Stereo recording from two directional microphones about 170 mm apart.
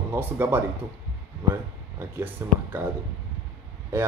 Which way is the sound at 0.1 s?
10° right (ahead or behind).